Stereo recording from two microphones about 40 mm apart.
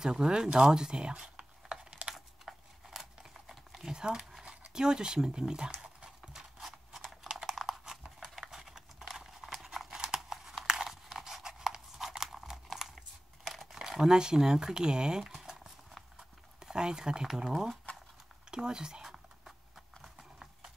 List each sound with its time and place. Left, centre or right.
0.0 s speech: centre
1.3 s computer keyboard: right
2.1 s a sound: centre
6.3 s a sound: centre
7.4 s clip-clop: centre
11.4 s a sound: centre
13.5 s crumpling: centre
13.8 s speech: centre
15.3 s a sound: centre
16.5 s speech: centre
17.5 s speech: centre
18.5 s speech: centre
20.0 s clip-clop: centre